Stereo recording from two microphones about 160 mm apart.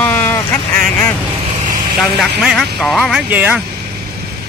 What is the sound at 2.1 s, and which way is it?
Speech, centre (ahead or behind).